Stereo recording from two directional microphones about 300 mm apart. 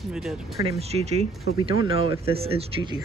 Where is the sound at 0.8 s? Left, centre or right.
Right.